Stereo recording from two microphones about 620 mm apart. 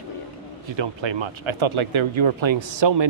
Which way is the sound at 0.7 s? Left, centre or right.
Right.